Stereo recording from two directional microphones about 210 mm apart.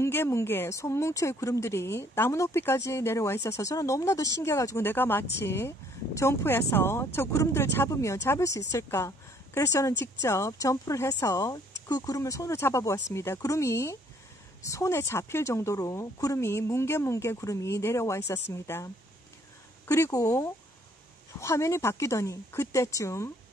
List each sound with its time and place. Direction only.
0.0 s speech: 10° left (ahead or behind)
19.9 s speech: 15° left (ahead or behind)